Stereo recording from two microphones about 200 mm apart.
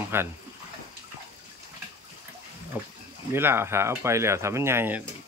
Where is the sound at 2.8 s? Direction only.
10° right (ahead or behind).